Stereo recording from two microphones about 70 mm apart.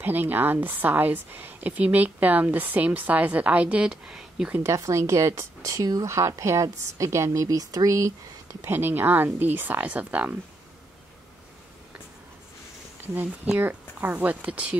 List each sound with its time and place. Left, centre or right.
0.0 s a woman's voice: right; by 4.5 s centre
4.6 s a woman's voice: right
5.7 s speech: right
6.0 s a woman's voice: right
8.6 s a woman's voice: right
13.6 s a woman's voice: right